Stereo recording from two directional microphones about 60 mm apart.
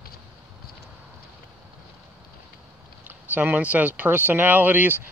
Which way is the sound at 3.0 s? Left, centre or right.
Right.